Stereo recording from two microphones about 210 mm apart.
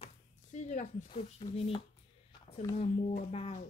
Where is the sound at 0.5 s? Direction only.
35° left (ahead or behind).